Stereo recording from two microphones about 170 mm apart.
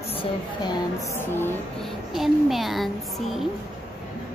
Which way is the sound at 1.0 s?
15° left (ahead or behind).